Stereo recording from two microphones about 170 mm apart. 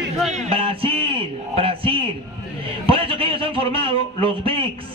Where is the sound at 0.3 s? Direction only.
40° right (ahead or behind).